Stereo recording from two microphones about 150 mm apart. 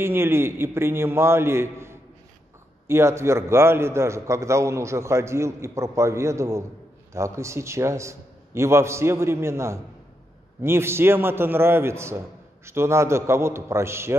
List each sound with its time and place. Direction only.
0.0 s a man's voice: 15° right (ahead or behind)